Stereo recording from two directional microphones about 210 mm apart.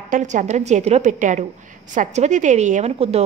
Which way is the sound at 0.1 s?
35° right (ahead or behind).